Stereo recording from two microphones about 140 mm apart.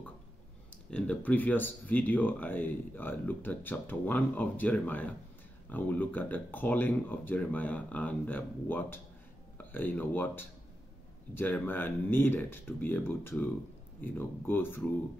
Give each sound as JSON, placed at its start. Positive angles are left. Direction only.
{"t": 0.8, "sound": "speech", "side_deg": 10}